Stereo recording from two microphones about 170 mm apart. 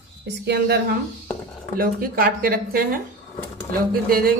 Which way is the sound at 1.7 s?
60° right (ahead or behind).